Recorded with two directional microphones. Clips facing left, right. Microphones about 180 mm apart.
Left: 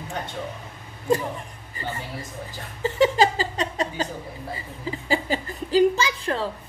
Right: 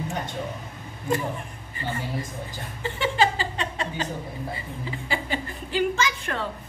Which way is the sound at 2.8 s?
40° left (ahead or behind).